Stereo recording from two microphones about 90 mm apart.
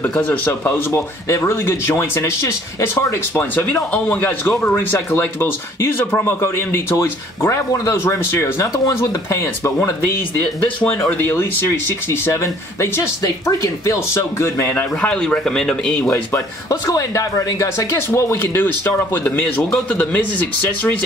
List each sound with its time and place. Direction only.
0.0 s speech: 20° left (ahead or behind); by 9.4 s 35° left (ahead or behind)
10.3 s speech: 20° left (ahead or behind)
11.6 s speech: 35° left (ahead or behind)
15.0 s speech: 10° left (ahead or behind)
16.1 s speech: 35° left (ahead or behind); by 20.9 s 20° left (ahead or behind)